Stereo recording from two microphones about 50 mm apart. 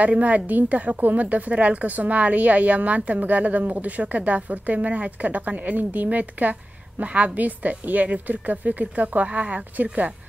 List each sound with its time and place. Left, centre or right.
0.0 s a woman's voice: right